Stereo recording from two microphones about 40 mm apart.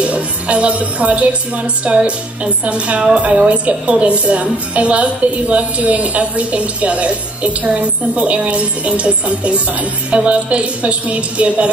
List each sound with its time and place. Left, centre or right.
0.0 s a woman's voice: right